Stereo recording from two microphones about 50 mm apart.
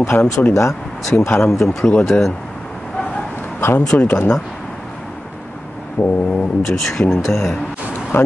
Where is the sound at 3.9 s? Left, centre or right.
Left.